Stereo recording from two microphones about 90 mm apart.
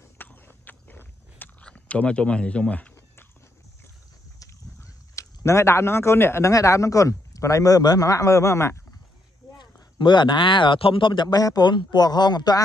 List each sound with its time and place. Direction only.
0.2 s a sound: 20° left (ahead or behind)
1.6 s speech: 15° left (ahead or behind)
4.7 s speech: 30° left (ahead or behind)
9.6 s a man's voice: 60° left (ahead or behind)